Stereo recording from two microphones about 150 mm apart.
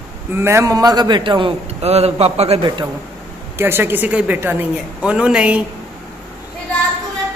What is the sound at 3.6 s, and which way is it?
A woman's voice, 15° right (ahead or behind).